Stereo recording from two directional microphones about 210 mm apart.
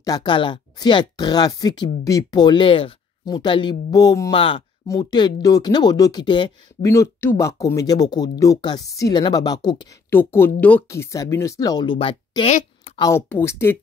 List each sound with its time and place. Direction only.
0.0 s speech: 20° left (ahead or behind)
12.5 s a sound: 30° left (ahead or behind)
13.0 s speech: 10° left (ahead or behind)